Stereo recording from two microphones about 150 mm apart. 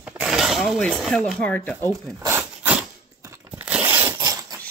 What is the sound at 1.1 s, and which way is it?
Speech, 5° left (ahead or behind).